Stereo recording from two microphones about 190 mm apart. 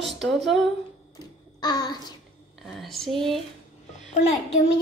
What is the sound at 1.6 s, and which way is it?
Babbling, 20° left (ahead or behind).